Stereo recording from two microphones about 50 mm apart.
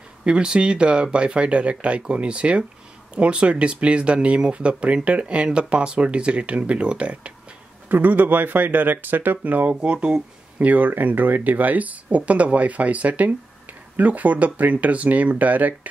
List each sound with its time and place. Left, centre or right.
0.2 s speech: centre
7.9 s speech: right
9.8 s speech: right
10.6 s speech: right